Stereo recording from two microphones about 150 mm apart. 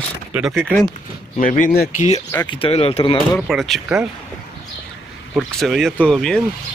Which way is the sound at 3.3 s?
Centre (ahead or behind).